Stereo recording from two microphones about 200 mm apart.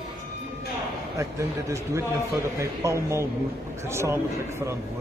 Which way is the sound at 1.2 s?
15° right (ahead or behind).